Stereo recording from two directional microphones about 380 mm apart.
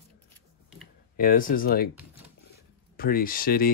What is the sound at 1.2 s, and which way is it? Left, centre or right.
Speech, left.